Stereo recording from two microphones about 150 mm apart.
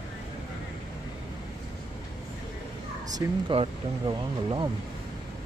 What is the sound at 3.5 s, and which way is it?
Speech, 30° right (ahead or behind).